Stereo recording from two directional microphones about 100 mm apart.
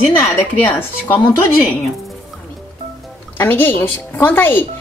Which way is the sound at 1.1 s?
20° left (ahead or behind).